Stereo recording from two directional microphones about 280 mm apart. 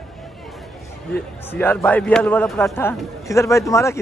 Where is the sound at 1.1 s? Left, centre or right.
Centre.